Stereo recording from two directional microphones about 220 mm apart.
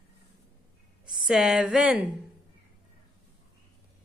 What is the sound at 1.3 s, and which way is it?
Speech, 5° right (ahead or behind).